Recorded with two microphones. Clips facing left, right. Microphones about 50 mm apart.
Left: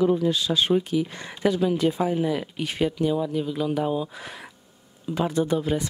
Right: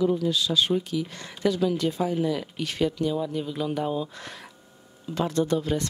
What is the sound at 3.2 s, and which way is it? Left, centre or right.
Speech, centre.